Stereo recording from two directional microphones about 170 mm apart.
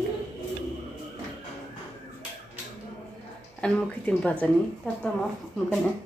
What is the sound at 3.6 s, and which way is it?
Speech, 5° left (ahead or behind).